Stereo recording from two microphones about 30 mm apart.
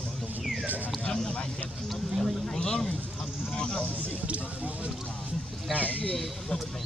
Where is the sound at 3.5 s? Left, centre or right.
Left.